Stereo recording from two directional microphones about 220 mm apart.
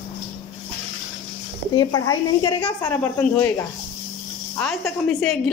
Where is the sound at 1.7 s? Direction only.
15° left (ahead or behind).